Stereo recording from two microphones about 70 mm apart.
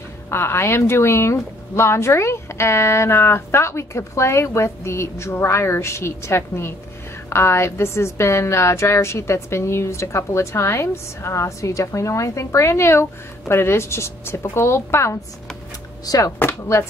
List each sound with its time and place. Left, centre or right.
0.3 s a woman's voice: left
16.3 s a woman's voice: left